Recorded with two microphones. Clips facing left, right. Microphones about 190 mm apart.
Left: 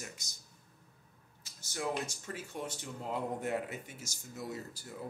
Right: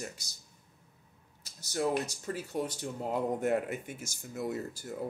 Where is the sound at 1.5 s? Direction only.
40° right (ahead or behind); by 4.8 s 55° right (ahead or behind).